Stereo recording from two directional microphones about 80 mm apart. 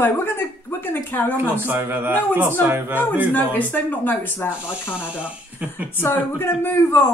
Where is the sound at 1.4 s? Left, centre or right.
Right.